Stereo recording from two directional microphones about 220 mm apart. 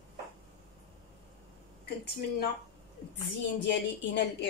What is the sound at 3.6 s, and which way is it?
Speech, 50° left (ahead or behind).